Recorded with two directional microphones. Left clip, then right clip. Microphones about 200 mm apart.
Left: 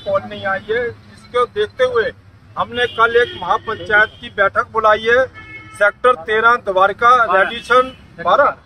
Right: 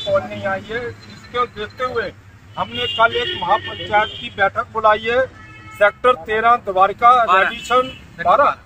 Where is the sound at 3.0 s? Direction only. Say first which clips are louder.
Left 2 dB; 10° left (ahead or behind).